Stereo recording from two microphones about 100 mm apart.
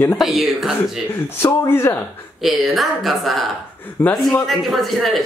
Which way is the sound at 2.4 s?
Centre (ahead or behind).